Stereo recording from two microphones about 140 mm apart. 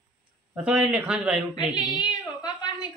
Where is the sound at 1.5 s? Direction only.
35° left (ahead or behind).